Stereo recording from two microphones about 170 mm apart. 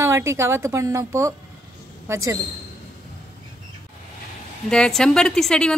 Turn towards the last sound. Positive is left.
turn(degrees=5)  # may be behind; listen again after turning